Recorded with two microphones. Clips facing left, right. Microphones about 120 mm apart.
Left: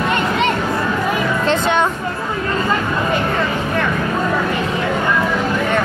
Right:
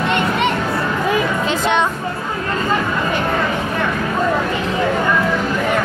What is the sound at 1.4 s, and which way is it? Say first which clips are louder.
Music: left 1 dB; centre (ahead or behind).